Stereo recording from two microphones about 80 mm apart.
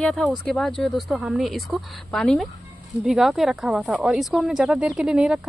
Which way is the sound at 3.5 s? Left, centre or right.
Centre.